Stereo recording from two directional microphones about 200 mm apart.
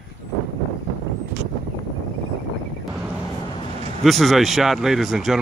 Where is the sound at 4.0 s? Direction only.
Centre (ahead or behind).